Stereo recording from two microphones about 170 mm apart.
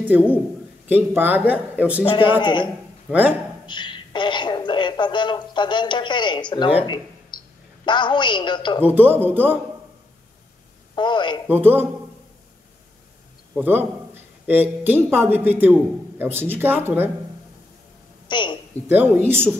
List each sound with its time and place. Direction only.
0.1 s speech: 10° right (ahead or behind)
2.0 s a woman's voice: 25° left (ahead or behind)
2.6 s a man's voice: 10° right (ahead or behind)
3.6 s a woman's voice: 25° left (ahead or behind)
7.3 s a sound: 25° left (ahead or behind)
7.8 s a woman's voice: 25° left (ahead or behind)
8.8 s speech: 10° right (ahead or behind)
11.0 s a woman's voice: 25° left (ahead or behind)
11.4 s speech: 10° right (ahead or behind)
13.6 s speech: 10° right (ahead or behind)
18.3 s a woman's voice: 30° left (ahead or behind)
19.2 s speech: 15° right (ahead or behind)